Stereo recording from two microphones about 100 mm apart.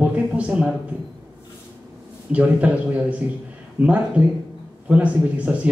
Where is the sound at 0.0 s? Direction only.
15° right (ahead or behind).